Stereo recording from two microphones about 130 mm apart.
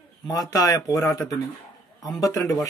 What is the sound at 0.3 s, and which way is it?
Speech, 30° left (ahead or behind).